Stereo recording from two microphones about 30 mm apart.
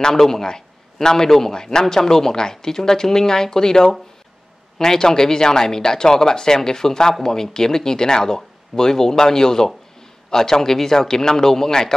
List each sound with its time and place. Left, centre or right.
0.1 s a man's voice: centre